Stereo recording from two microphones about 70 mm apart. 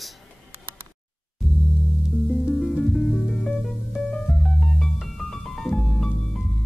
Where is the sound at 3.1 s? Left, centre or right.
Centre.